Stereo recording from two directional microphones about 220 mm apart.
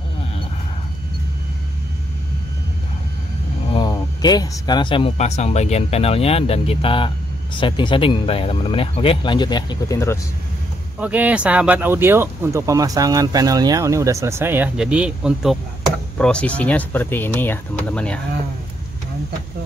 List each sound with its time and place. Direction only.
3.7 s speech: 20° left (ahead or behind)
11.0 s speech: 5° right (ahead or behind)